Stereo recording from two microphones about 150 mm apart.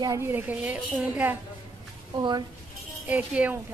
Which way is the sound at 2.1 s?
30° right (ahead or behind).